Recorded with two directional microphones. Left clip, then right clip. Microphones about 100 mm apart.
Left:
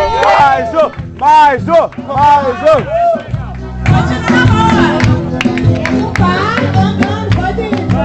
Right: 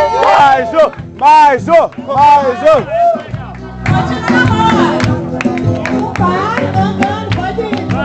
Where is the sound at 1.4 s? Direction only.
40° right (ahead or behind).